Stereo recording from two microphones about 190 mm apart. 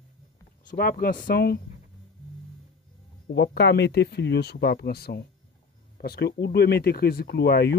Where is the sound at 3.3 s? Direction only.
65° left (ahead or behind).